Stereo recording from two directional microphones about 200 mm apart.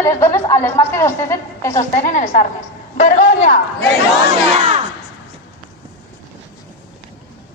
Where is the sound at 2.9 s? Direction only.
35° left (ahead or behind).